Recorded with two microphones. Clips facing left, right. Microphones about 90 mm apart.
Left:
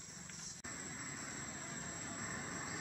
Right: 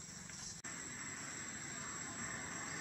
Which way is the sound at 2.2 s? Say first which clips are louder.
Left 2 dB; 5° left (ahead or behind).